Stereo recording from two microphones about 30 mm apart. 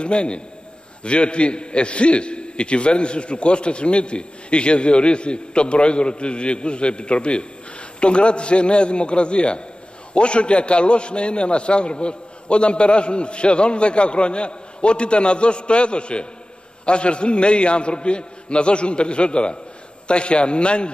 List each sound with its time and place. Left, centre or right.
0.0 s a man's voice: left